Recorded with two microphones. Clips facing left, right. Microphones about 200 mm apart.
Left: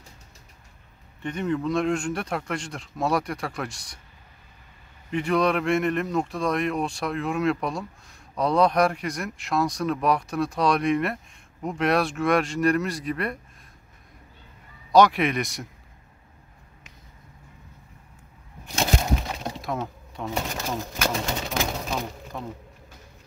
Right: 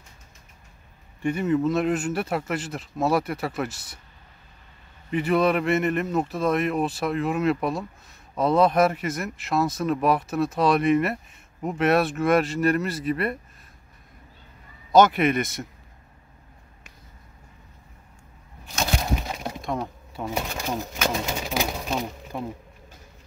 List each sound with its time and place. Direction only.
1.2 s speech: 5° right (ahead or behind)
5.1 s speech: 5° right (ahead or behind)
14.9 s speech: centre (ahead or behind)
19.6 s a sound: centre (ahead or behind)
20.2 s speech: 15° right (ahead or behind)
21.5 s a sound: 10° right (ahead or behind)